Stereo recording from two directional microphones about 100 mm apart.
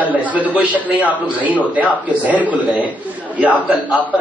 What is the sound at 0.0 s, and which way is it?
A man's voice, 15° right (ahead or behind).